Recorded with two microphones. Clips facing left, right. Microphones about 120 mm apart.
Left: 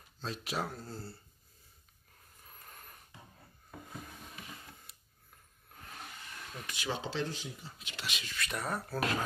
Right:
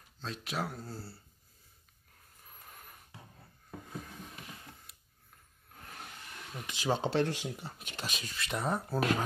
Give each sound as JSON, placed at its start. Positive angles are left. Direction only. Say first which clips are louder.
{"t": 0.2, "sound": "speech", "louder": "even", "side_deg": 5}
{"t": 0.7, "sound": "speech", "louder": "even", "side_deg": -10}
{"t": 2.4, "sound": "snort", "louder": "right 1 dB", "side_deg": -5}
{"t": 6.5, "sound": "speech", "louder": "right 2 dB", "side_deg": -20}
{"t": 6.8, "sound": "speech", "louder": "right 6 dB", "side_deg": -50}
{"t": 8.5, "sound": "speech", "louder": "right 4 dB", "side_deg": -25}